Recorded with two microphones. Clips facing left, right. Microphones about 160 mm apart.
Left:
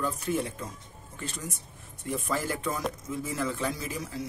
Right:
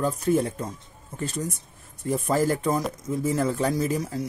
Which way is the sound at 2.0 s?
40° right (ahead or behind).